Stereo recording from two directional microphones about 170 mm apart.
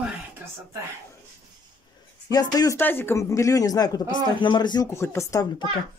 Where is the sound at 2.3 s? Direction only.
20° left (ahead or behind).